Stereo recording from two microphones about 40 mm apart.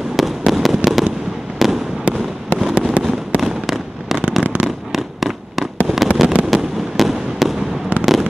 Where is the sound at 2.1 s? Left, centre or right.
Right.